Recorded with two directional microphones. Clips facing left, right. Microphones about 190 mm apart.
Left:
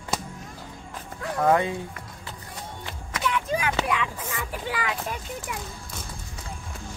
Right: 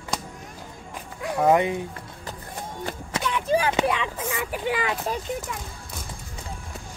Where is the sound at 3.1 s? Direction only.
30° right (ahead or behind).